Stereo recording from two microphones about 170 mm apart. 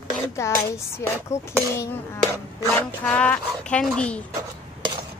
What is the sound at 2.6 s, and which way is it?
Speech, 10° left (ahead or behind).